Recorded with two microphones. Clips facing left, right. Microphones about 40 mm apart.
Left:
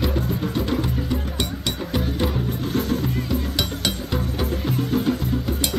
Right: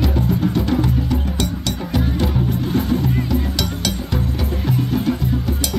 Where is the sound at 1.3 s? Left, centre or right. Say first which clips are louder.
Right 3 dB; centre.